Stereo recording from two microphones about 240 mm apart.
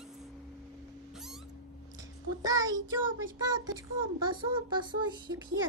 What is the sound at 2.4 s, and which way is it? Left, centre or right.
Child singing, centre.